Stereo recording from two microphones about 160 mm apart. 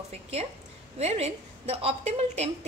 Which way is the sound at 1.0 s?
40° right (ahead or behind).